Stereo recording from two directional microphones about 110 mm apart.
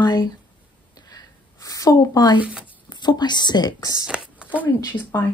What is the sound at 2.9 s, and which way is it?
Speech, 40° left (ahead or behind).